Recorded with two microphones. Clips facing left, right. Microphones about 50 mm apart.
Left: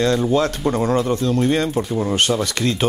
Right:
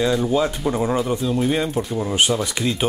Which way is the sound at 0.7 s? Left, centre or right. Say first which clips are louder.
Left 2 dB; centre.